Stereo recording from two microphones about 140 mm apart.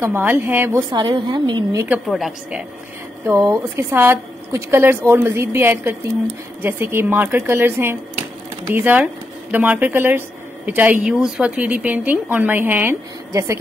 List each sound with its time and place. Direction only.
0.0 s a woman's voice: 15° right (ahead or behind)
0.7 s speech: 30° right (ahead or behind)
2.0 s a woman's voice: centre (ahead or behind)
3.3 s a woman's voice: 20° right (ahead or behind)